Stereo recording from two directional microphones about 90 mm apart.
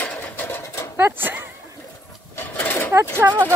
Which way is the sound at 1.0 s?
25° right (ahead or behind).